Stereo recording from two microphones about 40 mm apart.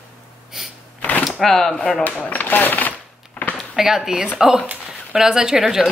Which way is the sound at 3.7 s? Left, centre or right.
Centre.